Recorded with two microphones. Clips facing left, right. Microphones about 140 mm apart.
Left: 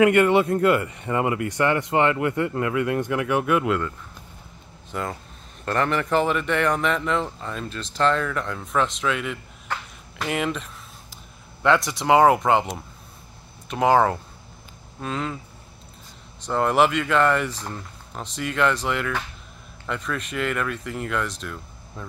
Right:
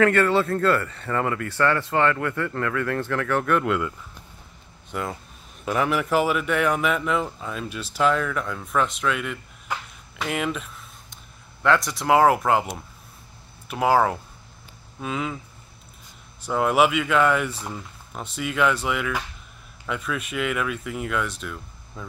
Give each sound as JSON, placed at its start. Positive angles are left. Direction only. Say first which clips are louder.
{"t": 0.0, "sound": "speech", "louder": "left 2 dB", "side_deg": 15}
{"t": 4.9, "sound": "speech", "louder": "even", "side_deg": 0}
{"t": 10.1, "sound": "a sound", "louder": "left 1 dB", "side_deg": 0}
{"t": 11.6, "sound": "speech", "louder": "left 1 dB", "side_deg": 0}
{"t": 16.4, "sound": "speech", "louder": "even", "side_deg": -5}